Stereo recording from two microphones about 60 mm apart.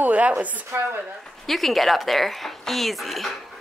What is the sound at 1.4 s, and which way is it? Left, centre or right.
A woman's voice, centre.